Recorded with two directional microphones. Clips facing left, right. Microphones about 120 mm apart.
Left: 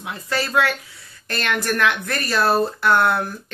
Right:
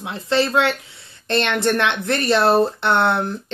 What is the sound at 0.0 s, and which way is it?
Speech, 25° right (ahead or behind).